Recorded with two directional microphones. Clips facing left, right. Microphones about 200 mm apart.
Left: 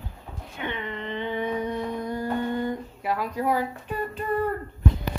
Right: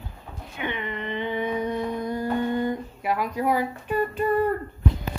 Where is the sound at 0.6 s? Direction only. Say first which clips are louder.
Right 2 dB; 15° right (ahead or behind).